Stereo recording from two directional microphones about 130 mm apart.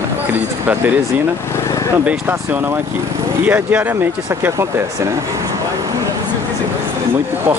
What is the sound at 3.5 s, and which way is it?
Speech, 15° right (ahead or behind).